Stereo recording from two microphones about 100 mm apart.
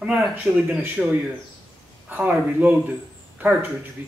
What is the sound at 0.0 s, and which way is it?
Speech, 10° right (ahead or behind).